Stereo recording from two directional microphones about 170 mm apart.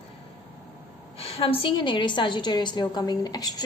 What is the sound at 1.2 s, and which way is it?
A woman's voice, 35° left (ahead or behind).